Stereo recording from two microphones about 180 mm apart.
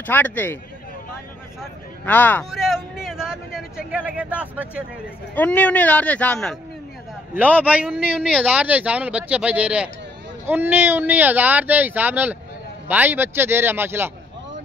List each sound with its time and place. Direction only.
0.0 s speech: 10° left (ahead or behind)
2.0 s speech: 10° left (ahead or behind); by 4.8 s 10° right (ahead or behind)
5.3 s speech: 10° left (ahead or behind)
7.3 s speech: 10° right (ahead or behind)